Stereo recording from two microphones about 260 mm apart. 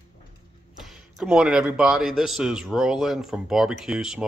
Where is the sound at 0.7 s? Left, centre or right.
Centre.